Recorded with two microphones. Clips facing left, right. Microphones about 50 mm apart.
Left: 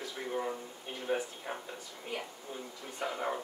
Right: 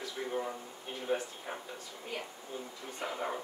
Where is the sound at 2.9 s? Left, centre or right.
Centre.